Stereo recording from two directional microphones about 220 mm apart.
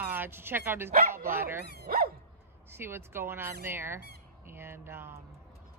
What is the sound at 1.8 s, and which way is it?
Dog, 45° right (ahead or behind).